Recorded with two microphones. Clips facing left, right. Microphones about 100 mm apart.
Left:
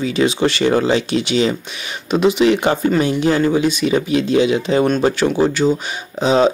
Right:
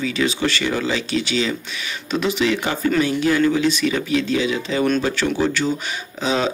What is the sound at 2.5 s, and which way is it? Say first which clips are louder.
Speech: left 5 dB; 25° left (ahead or behind).